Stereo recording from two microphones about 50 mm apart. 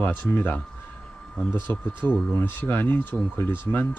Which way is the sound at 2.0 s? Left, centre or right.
Left.